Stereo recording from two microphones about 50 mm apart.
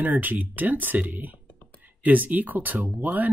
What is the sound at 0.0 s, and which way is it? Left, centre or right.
Speech, right.